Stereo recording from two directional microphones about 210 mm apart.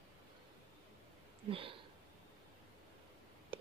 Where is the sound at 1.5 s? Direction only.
25° right (ahead or behind).